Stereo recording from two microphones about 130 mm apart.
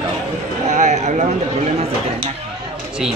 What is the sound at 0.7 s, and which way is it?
Speech, 65° right (ahead or behind).